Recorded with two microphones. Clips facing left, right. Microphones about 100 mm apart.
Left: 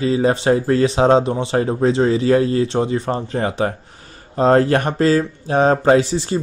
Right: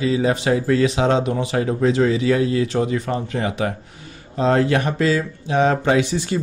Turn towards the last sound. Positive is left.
turn(degrees=35)  # may be behind; listen again after turning